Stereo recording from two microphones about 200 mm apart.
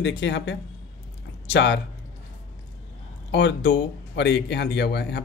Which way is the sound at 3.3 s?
60° left (ahead or behind).